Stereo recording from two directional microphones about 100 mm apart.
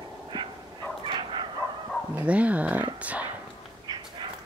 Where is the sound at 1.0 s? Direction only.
50° right (ahead or behind).